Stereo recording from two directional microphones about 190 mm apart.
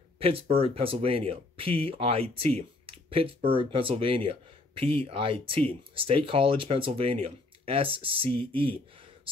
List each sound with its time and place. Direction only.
0.2 s speech: 30° right (ahead or behind)